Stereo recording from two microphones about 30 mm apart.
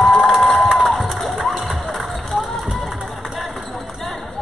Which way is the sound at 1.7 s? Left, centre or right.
Centre.